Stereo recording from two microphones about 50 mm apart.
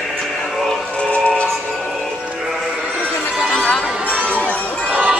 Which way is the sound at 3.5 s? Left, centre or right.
Centre.